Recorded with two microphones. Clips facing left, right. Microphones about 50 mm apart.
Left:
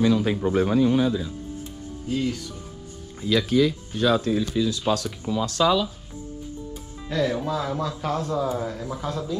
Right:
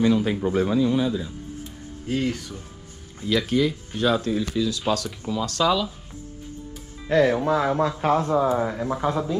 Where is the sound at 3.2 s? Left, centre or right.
Right.